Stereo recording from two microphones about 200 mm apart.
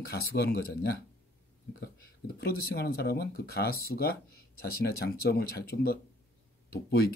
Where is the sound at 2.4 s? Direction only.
50° left (ahead or behind).